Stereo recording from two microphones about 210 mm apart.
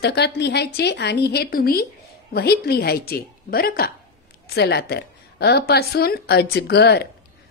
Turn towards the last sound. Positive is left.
turn(degrees=50)  # may be behind; listen again after turning